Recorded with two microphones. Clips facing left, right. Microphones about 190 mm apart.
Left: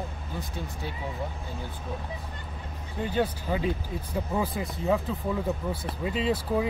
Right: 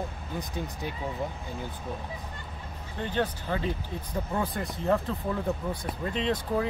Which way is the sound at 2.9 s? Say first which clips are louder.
Left 2 dB; 10° left (ahead or behind).